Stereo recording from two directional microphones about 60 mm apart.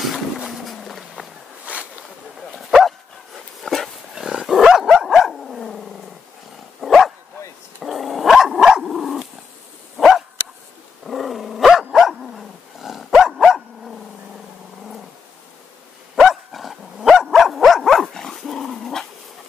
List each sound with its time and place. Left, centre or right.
0.0 s vehicle: centre
1.6 s boat: right
2.5 s dog: centre
4.1 s dog: centre
16.2 s dog: centre